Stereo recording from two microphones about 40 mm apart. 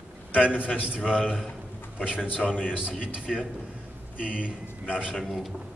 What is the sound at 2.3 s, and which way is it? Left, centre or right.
Speech, left.